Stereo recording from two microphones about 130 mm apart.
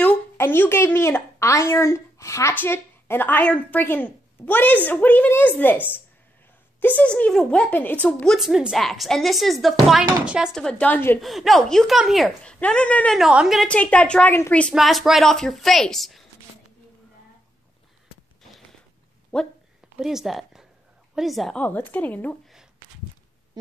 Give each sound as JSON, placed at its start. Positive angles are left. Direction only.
{"t": 0.4, "sound": "speech", "side_deg": 15}
{"t": 6.8, "sound": "a woman's voice", "side_deg": 10}
{"t": 10.5, "sound": "speech", "side_deg": 5}
{"t": 11.1, "sound": "a woman's voice", "side_deg": 0}
{"t": 13.2, "sound": "a woman's voice", "side_deg": -5}
{"t": 13.7, "sound": "a woman's voice", "side_deg": 10}
{"t": 19.3, "sound": "speech", "side_deg": 5}
{"t": 20.0, "sound": "a woman's voice", "side_deg": -5}
{"t": 21.5, "sound": "speech", "side_deg": 15}